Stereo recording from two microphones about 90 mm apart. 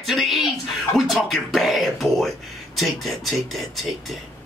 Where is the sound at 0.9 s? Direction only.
Centre (ahead or behind).